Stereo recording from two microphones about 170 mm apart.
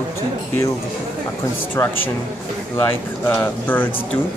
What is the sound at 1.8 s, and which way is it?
Speech, 20° left (ahead or behind).